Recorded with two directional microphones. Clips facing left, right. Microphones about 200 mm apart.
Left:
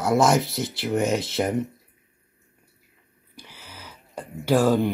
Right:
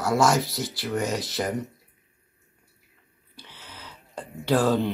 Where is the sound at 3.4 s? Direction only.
10° left (ahead or behind).